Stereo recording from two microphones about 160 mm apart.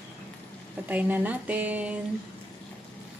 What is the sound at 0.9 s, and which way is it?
Speech, 10° right (ahead or behind).